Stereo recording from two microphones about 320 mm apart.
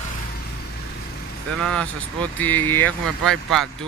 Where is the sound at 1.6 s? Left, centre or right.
Centre.